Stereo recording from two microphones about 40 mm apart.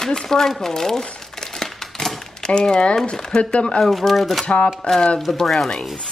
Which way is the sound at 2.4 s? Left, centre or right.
Left.